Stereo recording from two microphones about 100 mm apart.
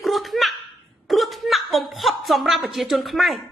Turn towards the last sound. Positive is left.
turn(degrees=0)  # may be behind; listen again after turning